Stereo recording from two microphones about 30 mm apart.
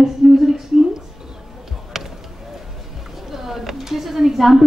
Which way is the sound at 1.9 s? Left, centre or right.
Centre.